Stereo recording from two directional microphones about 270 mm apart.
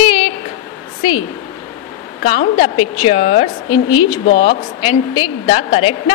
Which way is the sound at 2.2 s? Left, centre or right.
Left.